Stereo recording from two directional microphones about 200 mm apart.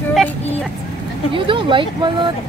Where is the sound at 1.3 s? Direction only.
25° right (ahead or behind).